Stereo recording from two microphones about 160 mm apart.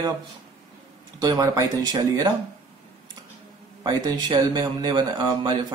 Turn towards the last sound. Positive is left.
turn(degrees=-25)  # may be behind; listen again after turning